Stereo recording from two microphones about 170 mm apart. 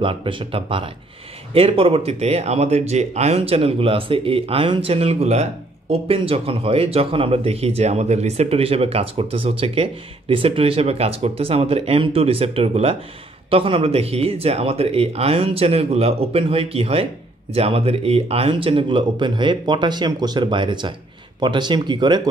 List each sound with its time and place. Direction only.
0.0 s speech: 30° right (ahead or behind)